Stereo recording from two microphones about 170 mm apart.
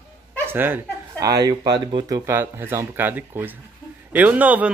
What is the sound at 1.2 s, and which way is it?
Speech, 20° right (ahead or behind).